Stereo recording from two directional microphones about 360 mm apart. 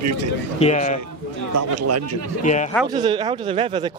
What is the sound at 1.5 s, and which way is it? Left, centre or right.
Speech, right.